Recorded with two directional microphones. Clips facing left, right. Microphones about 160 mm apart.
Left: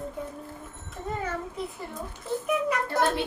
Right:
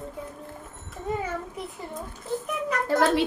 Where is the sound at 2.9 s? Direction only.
90° right.